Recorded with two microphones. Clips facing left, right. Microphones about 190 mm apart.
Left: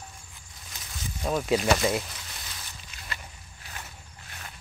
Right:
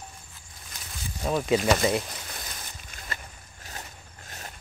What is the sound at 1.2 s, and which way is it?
Speech, centre (ahead or behind).